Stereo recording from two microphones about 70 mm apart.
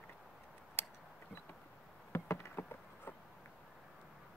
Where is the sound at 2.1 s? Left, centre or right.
Left.